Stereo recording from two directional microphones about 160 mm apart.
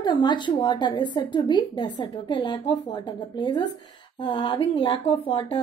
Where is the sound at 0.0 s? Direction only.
30° left (ahead or behind).